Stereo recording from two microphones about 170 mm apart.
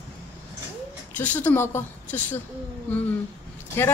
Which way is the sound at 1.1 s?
10° left (ahead or behind).